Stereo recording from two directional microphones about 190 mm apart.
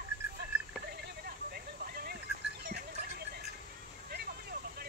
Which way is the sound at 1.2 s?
55° right (ahead or behind).